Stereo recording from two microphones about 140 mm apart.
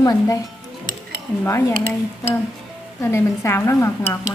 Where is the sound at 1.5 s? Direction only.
20° left (ahead or behind).